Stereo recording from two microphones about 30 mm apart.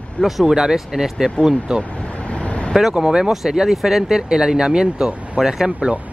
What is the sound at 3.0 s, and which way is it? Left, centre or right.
Speech, right.